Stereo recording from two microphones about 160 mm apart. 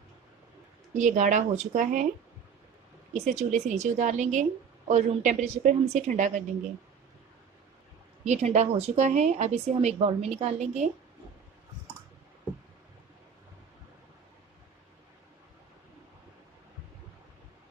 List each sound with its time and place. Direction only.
0.9 s speech: 50° right (ahead or behind)
3.1 s speech: 50° right (ahead or behind)
8.2 s speech: 45° right (ahead or behind)